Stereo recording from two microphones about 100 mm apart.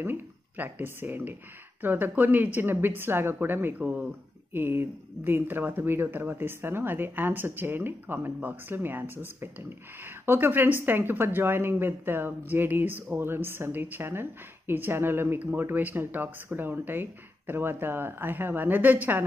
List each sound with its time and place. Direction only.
0.0 s a woman's voice: 20° right (ahead or behind)